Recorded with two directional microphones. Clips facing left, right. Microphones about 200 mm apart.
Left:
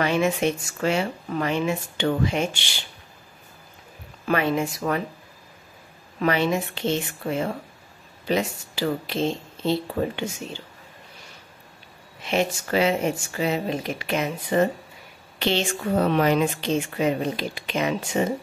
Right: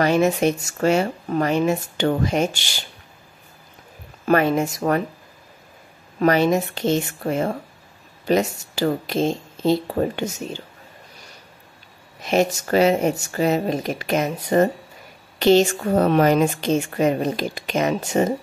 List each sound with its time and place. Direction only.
0.0 s speech: 40° right (ahead or behind)
4.3 s speech: 45° right (ahead or behind)
6.1 s speech: 40° right (ahead or behind)
12.2 s speech: 40° right (ahead or behind)